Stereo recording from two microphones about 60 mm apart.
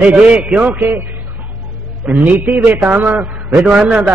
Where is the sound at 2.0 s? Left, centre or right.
Right.